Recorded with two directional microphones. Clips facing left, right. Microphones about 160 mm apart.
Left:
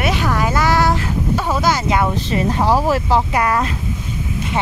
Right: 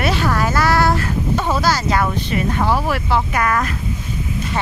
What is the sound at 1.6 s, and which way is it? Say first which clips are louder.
Speech: left 1 dB; 20° left (ahead or behind).